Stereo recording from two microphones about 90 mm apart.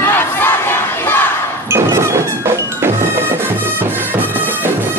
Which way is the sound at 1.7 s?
30° right (ahead or behind).